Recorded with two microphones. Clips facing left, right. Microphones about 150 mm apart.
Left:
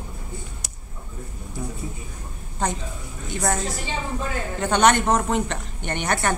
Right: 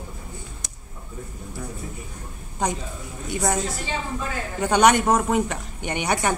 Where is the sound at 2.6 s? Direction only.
15° right (ahead or behind).